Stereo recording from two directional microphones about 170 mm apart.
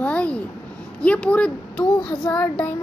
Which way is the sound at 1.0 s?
5° left (ahead or behind).